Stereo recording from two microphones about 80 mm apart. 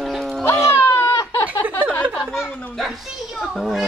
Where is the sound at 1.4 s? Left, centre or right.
Left.